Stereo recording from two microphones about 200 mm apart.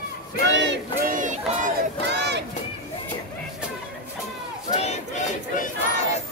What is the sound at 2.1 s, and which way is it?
Crowd, 60° right (ahead or behind).